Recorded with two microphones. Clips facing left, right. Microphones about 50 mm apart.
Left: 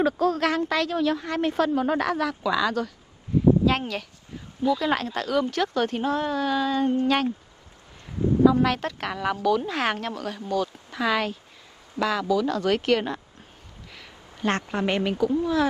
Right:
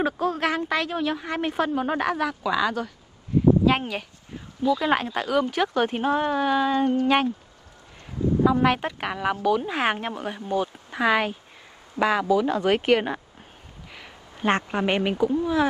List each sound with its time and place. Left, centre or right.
0.0 s a woman's voice: centre
4.3 s a sound: right
4.7 s a woman's voice: centre
8.5 s a woman's voice: right